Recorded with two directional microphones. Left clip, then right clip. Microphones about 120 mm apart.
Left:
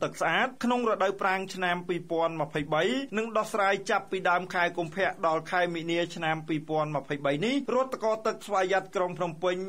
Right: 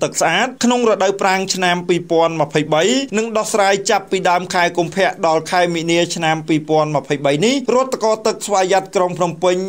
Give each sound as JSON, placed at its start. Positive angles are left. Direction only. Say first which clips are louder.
{"t": 0.0, "sound": "speech", "louder": "right 11 dB", "side_deg": -20}